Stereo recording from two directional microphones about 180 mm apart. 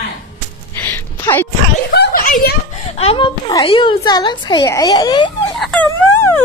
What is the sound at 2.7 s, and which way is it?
A woman's voice, 35° left (ahead or behind).